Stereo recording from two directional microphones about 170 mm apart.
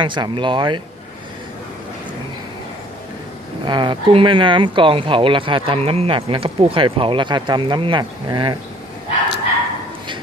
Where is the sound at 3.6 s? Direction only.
25° right (ahead or behind).